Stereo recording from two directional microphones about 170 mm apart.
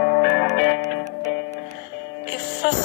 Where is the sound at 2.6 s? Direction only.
90° left.